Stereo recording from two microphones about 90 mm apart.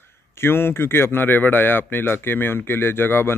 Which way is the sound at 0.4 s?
25° left (ahead or behind).